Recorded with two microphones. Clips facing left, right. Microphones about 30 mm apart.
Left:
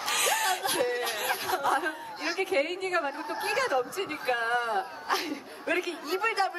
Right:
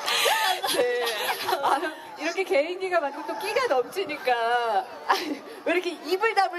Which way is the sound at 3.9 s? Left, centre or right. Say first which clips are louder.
Right 4 dB; right.